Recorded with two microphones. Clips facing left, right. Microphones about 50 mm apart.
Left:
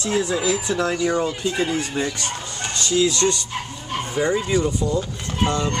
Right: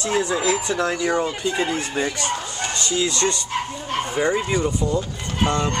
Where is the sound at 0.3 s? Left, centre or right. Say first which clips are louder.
Right 1 dB; right.